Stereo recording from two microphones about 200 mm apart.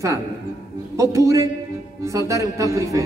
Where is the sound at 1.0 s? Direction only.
15° right (ahead or behind).